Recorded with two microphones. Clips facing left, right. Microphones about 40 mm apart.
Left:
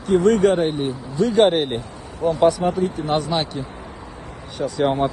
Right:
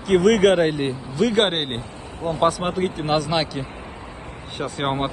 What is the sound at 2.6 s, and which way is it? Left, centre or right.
Speech, right.